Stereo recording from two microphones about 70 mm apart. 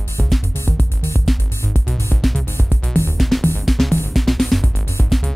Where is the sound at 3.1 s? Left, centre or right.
Centre.